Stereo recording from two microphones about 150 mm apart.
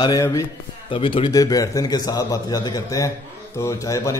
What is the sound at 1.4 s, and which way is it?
A man's voice, 20° left (ahead or behind).